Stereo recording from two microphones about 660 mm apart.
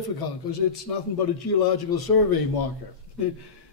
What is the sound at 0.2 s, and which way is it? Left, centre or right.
Speech, left.